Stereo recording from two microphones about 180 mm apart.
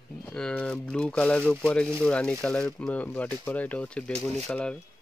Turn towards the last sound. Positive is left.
turn(degrees=5)  # may be behind; listen again after turning